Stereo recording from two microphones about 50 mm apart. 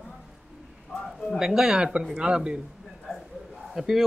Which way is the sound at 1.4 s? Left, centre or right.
Centre.